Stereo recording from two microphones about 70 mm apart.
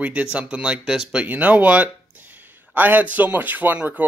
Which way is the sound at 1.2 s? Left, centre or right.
Right.